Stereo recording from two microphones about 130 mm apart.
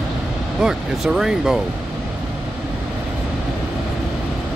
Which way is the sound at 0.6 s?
5° right (ahead or behind).